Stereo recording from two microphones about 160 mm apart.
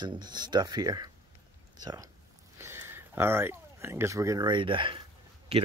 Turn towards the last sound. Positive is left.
turn(degrees=-35)  # may be behind; listen again after turning